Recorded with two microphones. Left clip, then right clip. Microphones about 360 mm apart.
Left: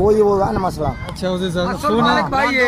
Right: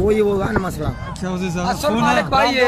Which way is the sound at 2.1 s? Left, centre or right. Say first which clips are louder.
Even; right.